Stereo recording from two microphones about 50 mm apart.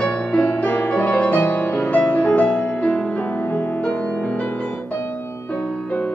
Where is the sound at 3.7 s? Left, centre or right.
Left.